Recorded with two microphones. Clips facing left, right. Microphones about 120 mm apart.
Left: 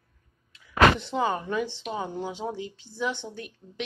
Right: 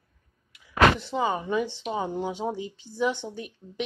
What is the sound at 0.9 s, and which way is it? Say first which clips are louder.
A woman's voice: even; 5° right (ahead or behind).